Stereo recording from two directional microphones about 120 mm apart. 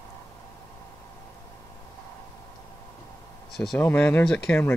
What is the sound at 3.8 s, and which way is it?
Speech, 15° left (ahead or behind).